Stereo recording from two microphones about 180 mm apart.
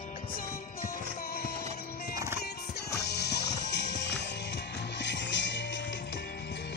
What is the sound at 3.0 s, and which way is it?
Music, 65° left (ahead or behind).